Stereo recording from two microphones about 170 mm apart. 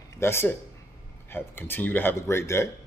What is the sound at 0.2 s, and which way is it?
Speech, 15° left (ahead or behind).